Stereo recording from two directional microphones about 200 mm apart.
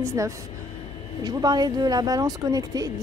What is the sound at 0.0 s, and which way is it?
A woman's voice, 15° right (ahead or behind).